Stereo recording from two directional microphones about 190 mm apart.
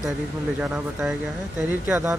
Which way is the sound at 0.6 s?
5° right (ahead or behind).